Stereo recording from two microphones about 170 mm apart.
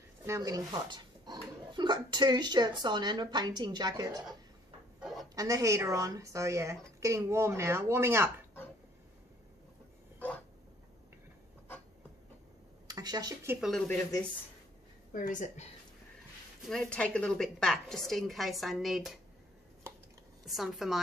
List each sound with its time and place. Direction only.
0.3 s speech: 20° right (ahead or behind)
5.3 s a woman's voice: 20° right (ahead or behind)
10.1 s a sound: 10° left (ahead or behind)
12.8 s a sound: 25° right (ahead or behind)
13.6 s a woman's voice: centre (ahead or behind)
15.1 s a woman's voice: 50° left (ahead or behind)
16.6 s a woman's voice: 5° left (ahead or behind)
20.4 s a woman's voice: centre (ahead or behind)